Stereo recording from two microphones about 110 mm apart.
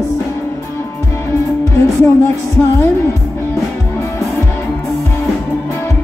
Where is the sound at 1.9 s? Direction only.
25° left (ahead or behind).